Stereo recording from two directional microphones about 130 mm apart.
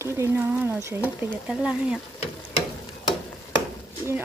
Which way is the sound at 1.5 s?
5° right (ahead or behind).